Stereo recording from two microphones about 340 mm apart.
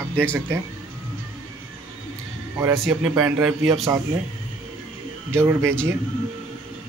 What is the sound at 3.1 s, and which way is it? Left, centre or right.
Speech, centre.